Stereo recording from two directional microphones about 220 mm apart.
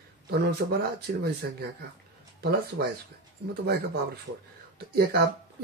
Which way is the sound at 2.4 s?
45° right (ahead or behind).